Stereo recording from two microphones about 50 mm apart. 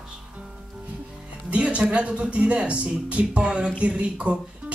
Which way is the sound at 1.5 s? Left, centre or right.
Right.